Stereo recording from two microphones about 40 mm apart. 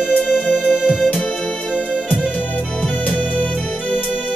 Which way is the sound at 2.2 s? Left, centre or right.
Left.